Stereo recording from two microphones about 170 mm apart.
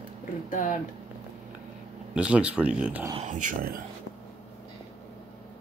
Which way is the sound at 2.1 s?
5° right (ahead or behind).